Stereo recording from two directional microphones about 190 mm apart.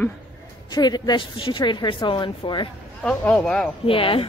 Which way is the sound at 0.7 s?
20° left (ahead or behind).